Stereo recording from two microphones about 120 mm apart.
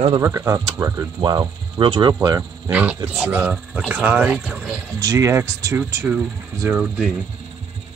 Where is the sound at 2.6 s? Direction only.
15° right (ahead or behind).